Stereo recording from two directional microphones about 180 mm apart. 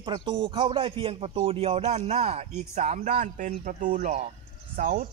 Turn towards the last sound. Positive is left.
turn(degrees=-50)  # may be behind; listen again after turning